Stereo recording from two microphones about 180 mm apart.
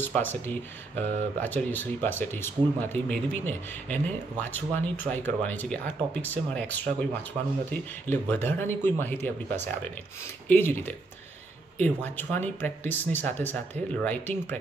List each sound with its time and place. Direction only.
0.0 s speech: 10° left (ahead or behind)
10.5 s speech: 10° left (ahead or behind)